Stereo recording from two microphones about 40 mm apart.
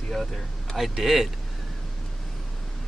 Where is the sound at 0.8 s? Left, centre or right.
Centre.